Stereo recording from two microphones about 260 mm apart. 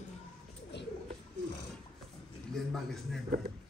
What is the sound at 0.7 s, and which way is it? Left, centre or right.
Pigeon, left.